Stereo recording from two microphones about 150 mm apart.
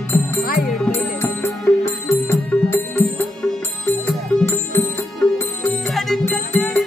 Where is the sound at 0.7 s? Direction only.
5° left (ahead or behind).